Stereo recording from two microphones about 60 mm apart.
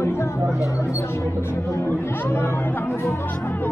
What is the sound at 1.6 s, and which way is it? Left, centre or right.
Speech, left.